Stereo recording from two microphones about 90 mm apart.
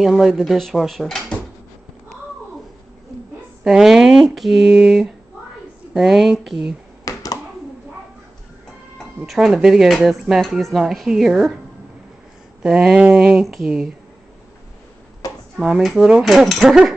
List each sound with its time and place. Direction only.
0.0 s speech: 5° right (ahead or behind)
3.6 s speech: 5° right (ahead or behind)
7.1 s a sound: 40° left (ahead or behind)
8.9 s speech: 5° right (ahead or behind)
12.6 s speech: 10° right (ahead or behind)
15.5 s speech: centre (ahead or behind)